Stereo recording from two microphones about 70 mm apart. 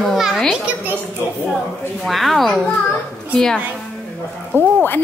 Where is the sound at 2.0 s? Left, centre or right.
Centre.